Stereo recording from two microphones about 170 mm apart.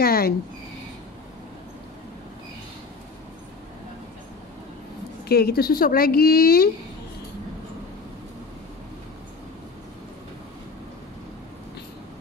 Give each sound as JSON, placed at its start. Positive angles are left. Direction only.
{"t": 0.0, "sound": "speech", "side_deg": 65}
{"t": 5.3, "sound": "a woman's voice", "side_deg": 65}